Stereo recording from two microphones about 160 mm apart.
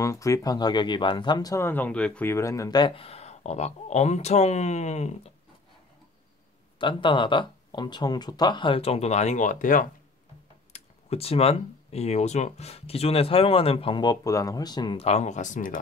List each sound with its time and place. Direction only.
0.0 s speech: 20° left (ahead or behind); by 5.3 s 45° left (ahead or behind)
6.8 s speech: 30° left (ahead or behind); by 9.8 s 55° left (ahead or behind)
10.7 s speech: 40° left (ahead or behind); by 15.8 s 55° left (ahead or behind)